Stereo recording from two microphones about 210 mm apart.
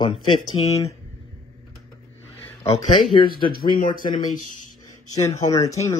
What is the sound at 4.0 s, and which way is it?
Speech, 40° left (ahead or behind).